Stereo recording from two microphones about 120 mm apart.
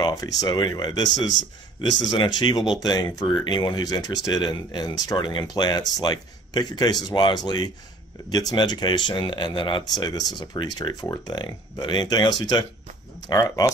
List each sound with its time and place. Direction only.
0.0 s speech: 35° left (ahead or behind)